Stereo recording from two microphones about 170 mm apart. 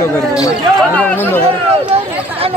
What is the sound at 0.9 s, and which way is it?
Speech, 10° left (ahead or behind).